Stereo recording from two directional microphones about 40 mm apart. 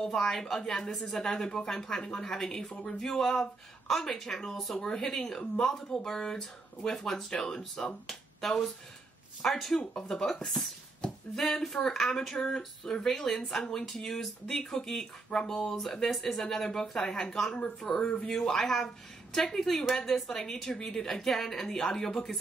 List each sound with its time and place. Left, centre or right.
0.0 s speech: centre
18.4 s speech: centre